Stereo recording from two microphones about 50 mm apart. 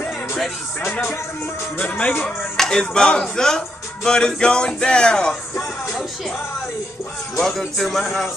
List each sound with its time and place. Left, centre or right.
1.8 s speech: left
2.2 s speech: centre
7.3 s speech: centre